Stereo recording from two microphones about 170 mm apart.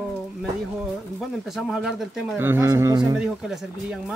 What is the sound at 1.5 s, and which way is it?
Speech, 5° right (ahead or behind).